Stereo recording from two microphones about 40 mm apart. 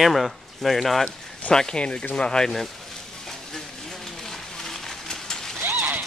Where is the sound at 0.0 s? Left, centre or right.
Centre.